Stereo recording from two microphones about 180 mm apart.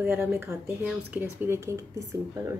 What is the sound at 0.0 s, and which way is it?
A woman's voice, 10° right (ahead or behind).